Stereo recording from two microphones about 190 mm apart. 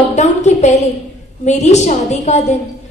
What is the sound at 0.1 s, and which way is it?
A woman's voice, 40° left (ahead or behind).